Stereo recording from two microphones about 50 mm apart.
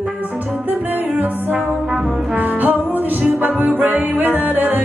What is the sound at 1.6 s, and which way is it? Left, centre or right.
Brass instrument, centre.